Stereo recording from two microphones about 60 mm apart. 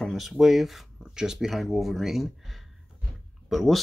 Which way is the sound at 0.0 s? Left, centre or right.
Centre.